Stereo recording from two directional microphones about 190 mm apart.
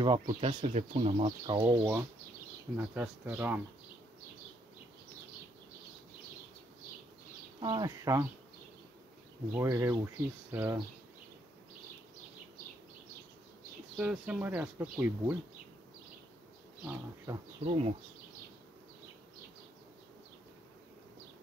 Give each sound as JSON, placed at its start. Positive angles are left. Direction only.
{"t": 0.0, "sound": "speech", "side_deg": -25}
{"t": 2.9, "sound": "speech", "side_deg": -5}
{"t": 7.6, "sound": "speech", "side_deg": -20}
{"t": 9.5, "sound": "speech", "side_deg": -15}
{"t": 13.9, "sound": "speech", "side_deg": -5}
{"t": 17.3, "sound": "speech", "side_deg": -10}
{"t": 17.6, "sound": "speech", "side_deg": -30}